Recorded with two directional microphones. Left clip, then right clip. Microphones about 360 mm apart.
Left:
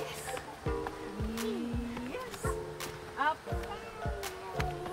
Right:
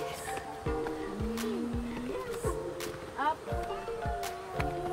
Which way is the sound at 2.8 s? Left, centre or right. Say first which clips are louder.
Left 1 dB; centre.